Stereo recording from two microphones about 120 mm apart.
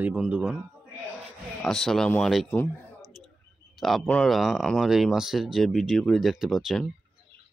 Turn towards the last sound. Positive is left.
turn(degrees=0)  # may be behind; listen again after turning